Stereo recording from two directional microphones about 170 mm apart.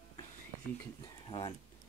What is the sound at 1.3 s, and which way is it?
Speech, 30° left (ahead or behind).